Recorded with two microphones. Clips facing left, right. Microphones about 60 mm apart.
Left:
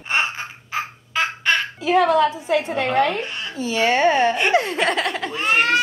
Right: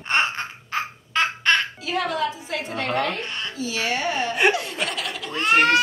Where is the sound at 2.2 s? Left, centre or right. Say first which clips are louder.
Left 7 dB; left.